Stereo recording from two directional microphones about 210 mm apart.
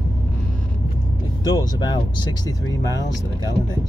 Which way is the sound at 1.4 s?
20° left (ahead or behind).